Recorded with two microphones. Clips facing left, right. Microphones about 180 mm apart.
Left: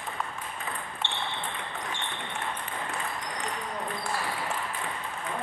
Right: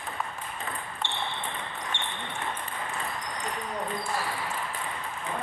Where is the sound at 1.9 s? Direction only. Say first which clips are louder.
Right 1 dB; 25° right (ahead or behind).